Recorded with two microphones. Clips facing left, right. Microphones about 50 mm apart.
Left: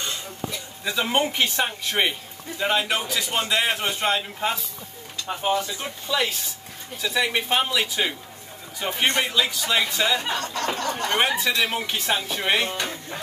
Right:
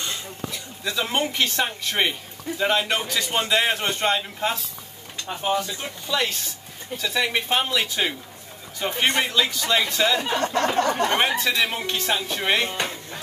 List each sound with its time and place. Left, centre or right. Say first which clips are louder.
0.8 s a man's voice: left 2 dB; centre
10.3 s speech: right 5 dB; right
11.1 s a man's voice: even; centre